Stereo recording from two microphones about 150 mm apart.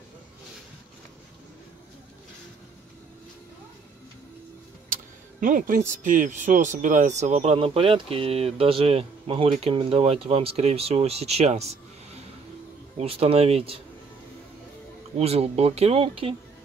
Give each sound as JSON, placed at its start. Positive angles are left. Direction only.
{"t": 5.4, "sound": "speech", "side_deg": -65}
{"t": 7.5, "sound": "speech", "side_deg": -35}
{"t": 12.9, "sound": "speech", "side_deg": -40}
{"t": 15.1, "sound": "speech", "side_deg": -45}